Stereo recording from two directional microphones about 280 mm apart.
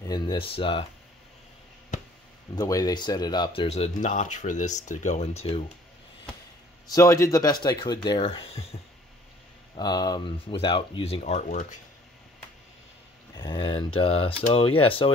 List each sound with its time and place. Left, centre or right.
0.0 s speech: centre
2.5 s speech: centre
6.9 s speech: centre; by 11.8 s left
13.4 s speech: centre